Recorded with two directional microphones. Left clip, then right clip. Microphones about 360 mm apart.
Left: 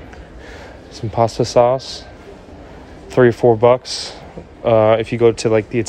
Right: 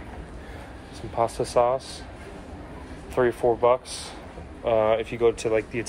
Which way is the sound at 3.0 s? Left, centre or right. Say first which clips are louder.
Left 10 dB; left.